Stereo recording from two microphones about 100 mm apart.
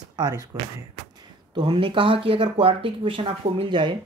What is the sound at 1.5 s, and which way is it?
Speech, 55° right (ahead or behind).